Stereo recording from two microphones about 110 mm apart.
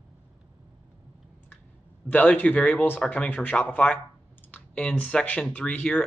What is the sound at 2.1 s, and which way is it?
Speech, 15° left (ahead or behind).